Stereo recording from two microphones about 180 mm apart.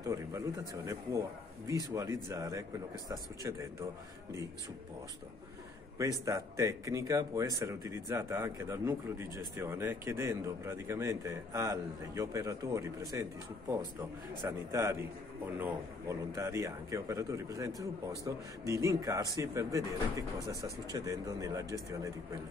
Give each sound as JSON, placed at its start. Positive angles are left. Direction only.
{"t": 0.0, "sound": "a sound", "side_deg": -20}
{"t": 1.7, "sound": "speech", "side_deg": -20}
{"t": 5.9, "sound": "speech", "side_deg": -20}
{"t": 16.3, "sound": "speech", "side_deg": -15}